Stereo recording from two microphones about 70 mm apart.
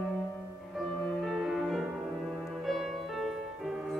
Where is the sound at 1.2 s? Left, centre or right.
Centre.